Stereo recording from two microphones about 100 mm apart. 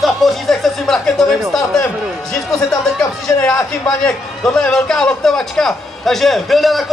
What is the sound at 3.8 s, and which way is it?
A man's voice, 5° left (ahead or behind).